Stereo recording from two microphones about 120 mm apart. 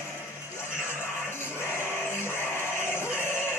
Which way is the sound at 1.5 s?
20° left (ahead or behind).